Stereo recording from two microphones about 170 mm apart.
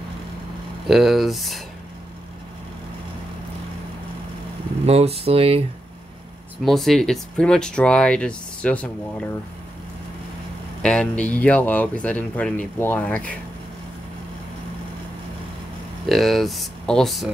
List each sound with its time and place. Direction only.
0.8 s speech: centre (ahead or behind)
4.8 s speech: 35° right (ahead or behind)
6.6 s speech: centre (ahead or behind)
10.8 s speech: 5° left (ahead or behind)
16.1 s speech: centre (ahead or behind)